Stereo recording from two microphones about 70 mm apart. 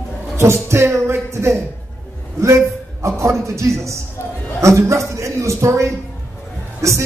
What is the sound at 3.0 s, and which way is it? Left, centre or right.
A man's voice, right.